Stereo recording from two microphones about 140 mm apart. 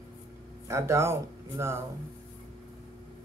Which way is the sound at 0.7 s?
20° right (ahead or behind).